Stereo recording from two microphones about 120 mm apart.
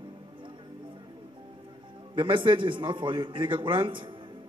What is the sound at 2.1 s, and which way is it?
A man's voice, 45° right (ahead or behind).